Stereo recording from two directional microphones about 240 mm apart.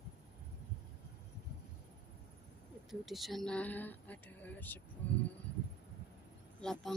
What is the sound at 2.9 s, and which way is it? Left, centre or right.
Speech, centre.